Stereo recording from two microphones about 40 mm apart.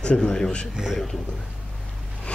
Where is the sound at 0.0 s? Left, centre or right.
Left.